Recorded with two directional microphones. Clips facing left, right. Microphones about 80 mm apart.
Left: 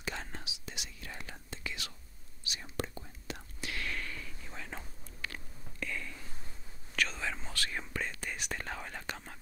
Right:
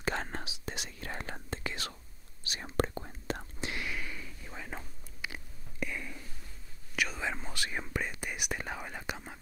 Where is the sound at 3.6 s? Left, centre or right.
Centre.